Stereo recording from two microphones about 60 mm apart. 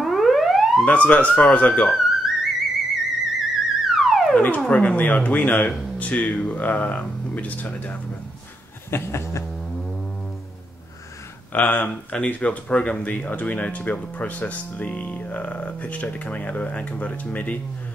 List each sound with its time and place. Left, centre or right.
0.0 s police car: centre
0.8 s speech: left
1.9 s music: centre
2.9 s theremin: centre
4.3 s music: left
4.6 s speech: left
8.9 s cat: left
11.5 s speech: left